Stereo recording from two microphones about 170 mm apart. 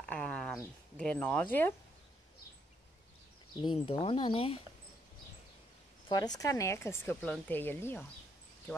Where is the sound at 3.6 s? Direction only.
30° left (ahead or behind).